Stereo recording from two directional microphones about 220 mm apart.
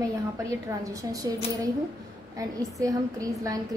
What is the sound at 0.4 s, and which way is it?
A woman's voice, 15° right (ahead or behind).